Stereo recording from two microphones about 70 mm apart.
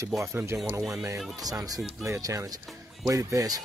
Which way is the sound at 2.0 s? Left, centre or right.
Right.